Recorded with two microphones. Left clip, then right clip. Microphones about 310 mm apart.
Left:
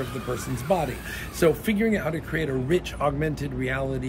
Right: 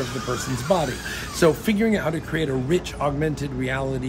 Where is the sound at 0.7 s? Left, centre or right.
Centre.